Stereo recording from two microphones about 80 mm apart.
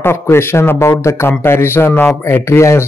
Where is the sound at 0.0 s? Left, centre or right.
Left.